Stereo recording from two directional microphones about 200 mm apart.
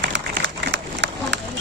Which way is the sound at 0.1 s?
60° right (ahead or behind).